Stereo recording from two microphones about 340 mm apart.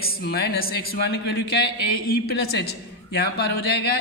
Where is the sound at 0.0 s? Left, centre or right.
Left.